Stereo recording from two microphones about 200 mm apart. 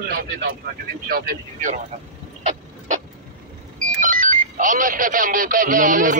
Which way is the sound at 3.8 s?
40° right (ahead or behind).